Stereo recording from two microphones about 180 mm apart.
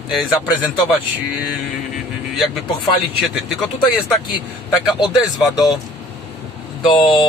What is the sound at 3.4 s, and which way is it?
Speech, centre (ahead or behind).